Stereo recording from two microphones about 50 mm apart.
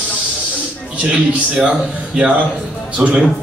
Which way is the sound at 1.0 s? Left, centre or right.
Right.